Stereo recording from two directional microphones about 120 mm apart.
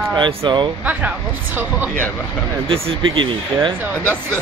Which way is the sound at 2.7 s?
45° right (ahead or behind).